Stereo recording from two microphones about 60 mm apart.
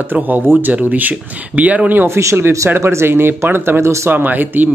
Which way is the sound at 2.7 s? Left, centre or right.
Right.